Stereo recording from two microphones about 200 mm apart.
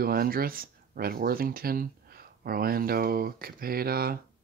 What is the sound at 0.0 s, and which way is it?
Speech, 50° right (ahead or behind).